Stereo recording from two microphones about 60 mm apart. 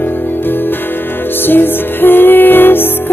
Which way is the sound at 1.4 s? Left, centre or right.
Left.